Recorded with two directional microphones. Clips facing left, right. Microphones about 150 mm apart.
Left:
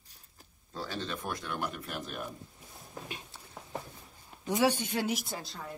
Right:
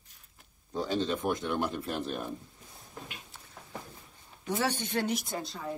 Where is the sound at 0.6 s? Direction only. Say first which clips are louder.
Right 7 dB; 20° right (ahead or behind).